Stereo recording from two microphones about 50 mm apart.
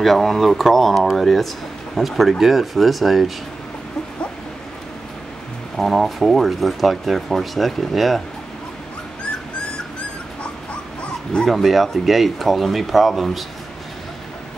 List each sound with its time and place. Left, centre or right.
0.0 s speech: centre
5.8 s speech: centre
10.4 s dog: left
11.4 s speech: centre